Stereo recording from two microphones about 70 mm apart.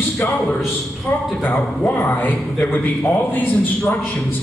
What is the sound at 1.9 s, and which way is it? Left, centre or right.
A man's voice, left.